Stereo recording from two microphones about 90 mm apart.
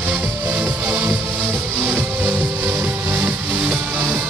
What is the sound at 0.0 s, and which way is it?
Music, 15° right (ahead or behind).